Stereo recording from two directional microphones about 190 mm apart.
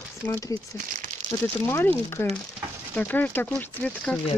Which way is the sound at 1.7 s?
10° left (ahead or behind).